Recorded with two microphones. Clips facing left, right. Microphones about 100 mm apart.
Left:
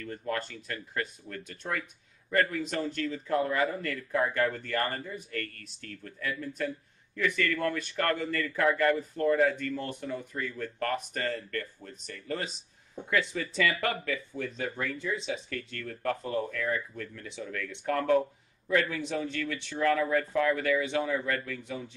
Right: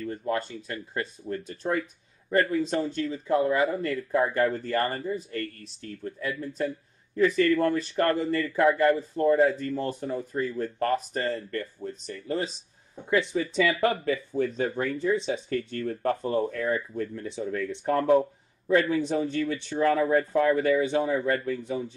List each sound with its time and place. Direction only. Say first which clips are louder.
0.0 s a man's voice: right 5 dB; 25° right (ahead or behind)